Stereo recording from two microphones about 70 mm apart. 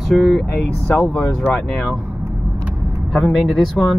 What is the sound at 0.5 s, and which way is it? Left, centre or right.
Speech, left.